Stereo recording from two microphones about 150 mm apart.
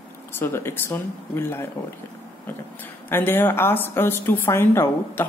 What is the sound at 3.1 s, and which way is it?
A woman's voice, 15° left (ahead or behind).